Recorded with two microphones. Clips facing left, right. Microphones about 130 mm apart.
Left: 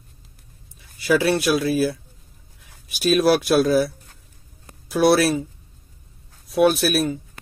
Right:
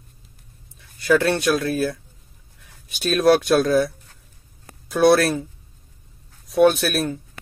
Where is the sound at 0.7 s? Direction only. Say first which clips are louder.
Right 1 dB; 5° left (ahead or behind).